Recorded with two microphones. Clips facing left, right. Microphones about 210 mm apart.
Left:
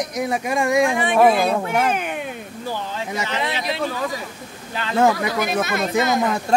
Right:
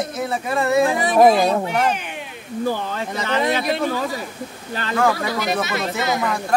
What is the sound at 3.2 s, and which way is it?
Speech, 50° right (ahead or behind).